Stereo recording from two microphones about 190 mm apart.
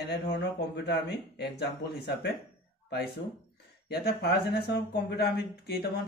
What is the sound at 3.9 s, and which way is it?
Speech, 60° left (ahead or behind).